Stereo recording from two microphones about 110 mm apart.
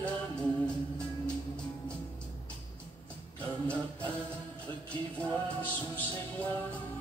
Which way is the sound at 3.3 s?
10° left (ahead or behind).